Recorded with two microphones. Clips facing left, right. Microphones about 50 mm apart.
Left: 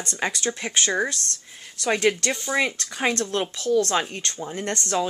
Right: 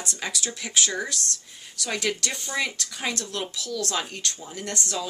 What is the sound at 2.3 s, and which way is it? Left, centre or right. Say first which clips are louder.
Speech: left 7 dB; centre.